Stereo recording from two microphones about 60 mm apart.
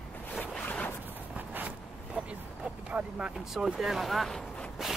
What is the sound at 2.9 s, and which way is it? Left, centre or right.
Vehicle, centre.